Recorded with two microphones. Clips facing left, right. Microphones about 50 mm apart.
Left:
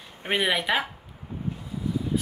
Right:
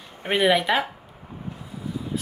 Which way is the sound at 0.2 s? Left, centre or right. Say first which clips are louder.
Right 5 dB; centre.